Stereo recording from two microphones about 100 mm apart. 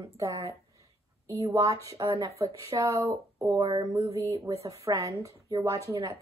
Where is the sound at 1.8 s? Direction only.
45° right (ahead or behind).